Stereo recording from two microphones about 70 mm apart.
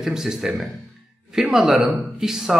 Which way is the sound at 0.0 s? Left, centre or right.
Centre.